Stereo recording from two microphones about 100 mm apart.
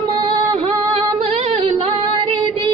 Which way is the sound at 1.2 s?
85° right.